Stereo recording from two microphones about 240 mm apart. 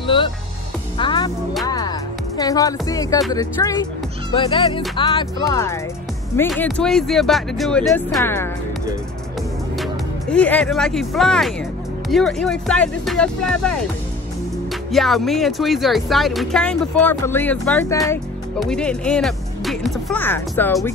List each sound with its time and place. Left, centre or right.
0.0 s music: left
3.3 s speech: centre
6.5 s speech: centre
10.3 s speech: centre
14.9 s speech: centre